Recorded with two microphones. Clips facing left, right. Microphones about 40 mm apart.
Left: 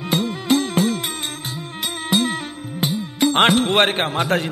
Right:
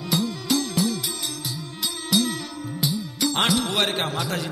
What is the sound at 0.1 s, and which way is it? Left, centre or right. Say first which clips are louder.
Music: left 5 dB; left.